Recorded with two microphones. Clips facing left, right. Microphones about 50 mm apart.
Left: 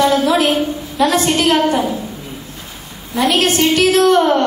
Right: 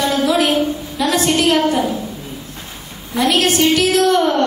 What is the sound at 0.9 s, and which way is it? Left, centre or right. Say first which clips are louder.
A woman's voice: left 2 dB; left.